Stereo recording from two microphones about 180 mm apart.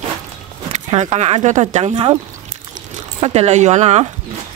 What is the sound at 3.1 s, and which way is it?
Speech, 35° right (ahead or behind).